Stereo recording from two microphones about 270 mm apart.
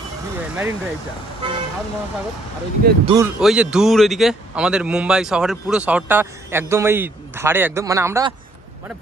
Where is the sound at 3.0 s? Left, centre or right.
Centre.